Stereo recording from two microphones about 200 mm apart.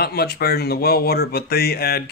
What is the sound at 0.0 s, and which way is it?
Speech, 50° left (ahead or behind).